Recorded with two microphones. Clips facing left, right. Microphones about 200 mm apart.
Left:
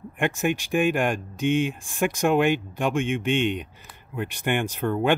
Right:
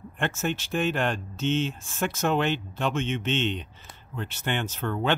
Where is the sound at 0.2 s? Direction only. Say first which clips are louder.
Left 4 dB; 15° left (ahead or behind).